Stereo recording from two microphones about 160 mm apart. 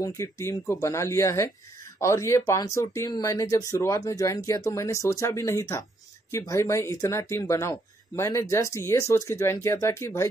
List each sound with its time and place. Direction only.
0.0 s speech: 20° left (ahead or behind)